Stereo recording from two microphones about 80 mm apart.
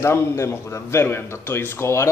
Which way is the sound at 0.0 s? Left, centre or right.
Left.